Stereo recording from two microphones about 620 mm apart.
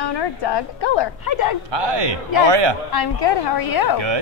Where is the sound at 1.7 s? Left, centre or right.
Right.